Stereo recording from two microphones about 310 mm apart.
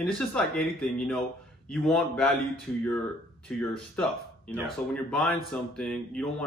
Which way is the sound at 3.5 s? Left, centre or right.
Centre.